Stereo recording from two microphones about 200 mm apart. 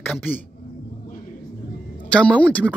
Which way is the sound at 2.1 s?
5° left (ahead or behind).